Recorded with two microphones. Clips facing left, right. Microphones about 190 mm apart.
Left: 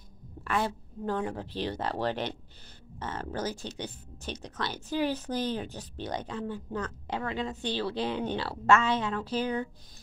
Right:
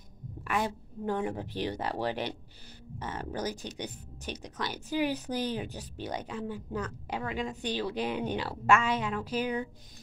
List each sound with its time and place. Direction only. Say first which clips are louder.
0.4 s speech: left 1 dB; 15° right (ahead or behind)